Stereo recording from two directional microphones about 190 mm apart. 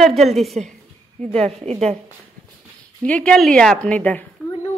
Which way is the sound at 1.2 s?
35° right (ahead or behind).